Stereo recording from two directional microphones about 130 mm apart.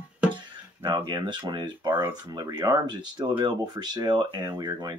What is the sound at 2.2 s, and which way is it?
Speech, 30° right (ahead or behind).